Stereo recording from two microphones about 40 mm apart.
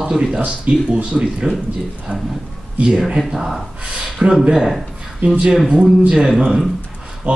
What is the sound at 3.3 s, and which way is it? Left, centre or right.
Speech, centre.